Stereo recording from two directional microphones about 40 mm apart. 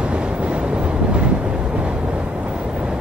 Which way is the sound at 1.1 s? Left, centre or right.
Right.